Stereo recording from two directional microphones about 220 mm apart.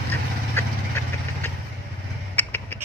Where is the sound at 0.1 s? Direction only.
10° left (ahead or behind).